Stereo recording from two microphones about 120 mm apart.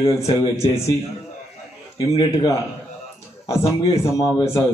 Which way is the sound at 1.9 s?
40° left (ahead or behind).